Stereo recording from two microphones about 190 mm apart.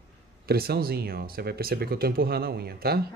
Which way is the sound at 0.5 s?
55° right (ahead or behind).